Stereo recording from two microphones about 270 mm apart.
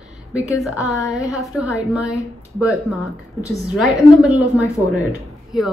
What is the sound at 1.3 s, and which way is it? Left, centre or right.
Speech, centre.